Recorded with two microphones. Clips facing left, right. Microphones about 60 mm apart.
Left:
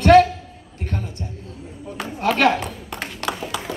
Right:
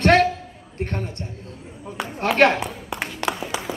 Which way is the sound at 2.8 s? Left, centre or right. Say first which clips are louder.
Right 1 dB; centre.